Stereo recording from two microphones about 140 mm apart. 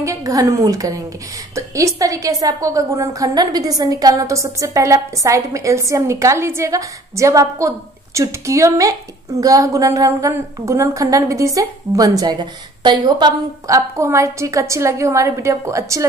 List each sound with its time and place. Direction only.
0.0 s a woman's voice: 25° right (ahead or behind)